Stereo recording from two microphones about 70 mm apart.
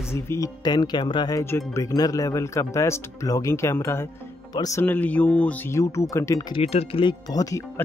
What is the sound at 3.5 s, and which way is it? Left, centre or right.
Speech, left.